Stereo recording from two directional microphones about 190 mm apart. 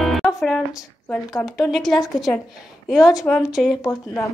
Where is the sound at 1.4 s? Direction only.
Centre (ahead or behind).